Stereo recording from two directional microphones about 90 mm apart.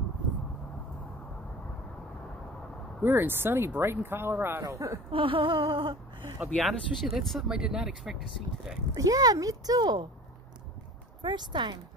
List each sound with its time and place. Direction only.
3.0 s speech: 25° right (ahead or behind)
4.6 s speech: 35° right (ahead or behind)
5.1 s a sound: 85° right
6.4 s speech: 5° right (ahead or behind)
8.9 s a child's voice: 45° right (ahead or behind)
11.2 s speech: 60° right (ahead or behind)